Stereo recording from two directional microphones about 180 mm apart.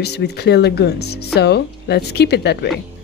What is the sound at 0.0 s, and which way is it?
Speech, 65° left (ahead or behind).